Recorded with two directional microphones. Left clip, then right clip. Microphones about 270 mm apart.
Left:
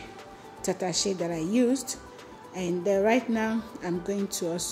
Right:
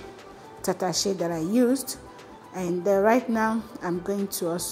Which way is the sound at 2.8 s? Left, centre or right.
Centre.